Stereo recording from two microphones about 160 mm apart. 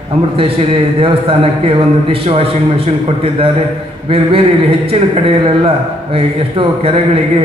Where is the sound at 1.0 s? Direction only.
35° right (ahead or behind).